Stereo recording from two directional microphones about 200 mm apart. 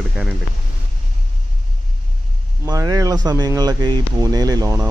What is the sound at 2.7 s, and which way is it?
Speech, 15° right (ahead or behind).